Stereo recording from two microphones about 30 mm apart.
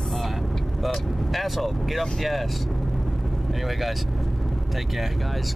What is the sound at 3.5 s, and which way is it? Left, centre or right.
Speech, centre.